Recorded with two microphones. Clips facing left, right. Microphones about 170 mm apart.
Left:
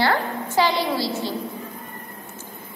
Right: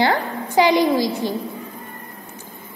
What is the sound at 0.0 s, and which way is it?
A woman's voice, 15° right (ahead or behind).